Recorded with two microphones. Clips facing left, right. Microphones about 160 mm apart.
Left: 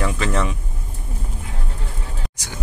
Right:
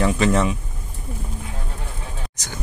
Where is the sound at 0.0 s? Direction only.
30° right (ahead or behind).